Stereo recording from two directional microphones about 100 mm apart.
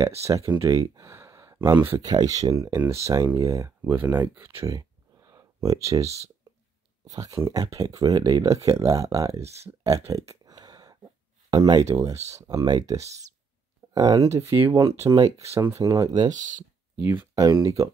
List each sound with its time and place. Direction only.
0.6 s speech: 30° right (ahead or behind)
4.6 s a sound: 35° right (ahead or behind)
7.1 s speech: 35° right (ahead or behind)
9.4 s speech: 90° right
9.8 s a sound: 35° right (ahead or behind)
11.5 s speech: 45° right (ahead or behind)
11.9 s speech: 35° right (ahead or behind)
16.9 s speech: 20° right (ahead or behind)
17.4 s speech: 35° right (ahead or behind)